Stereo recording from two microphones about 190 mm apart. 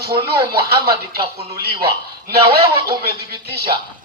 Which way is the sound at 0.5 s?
55° right (ahead or behind).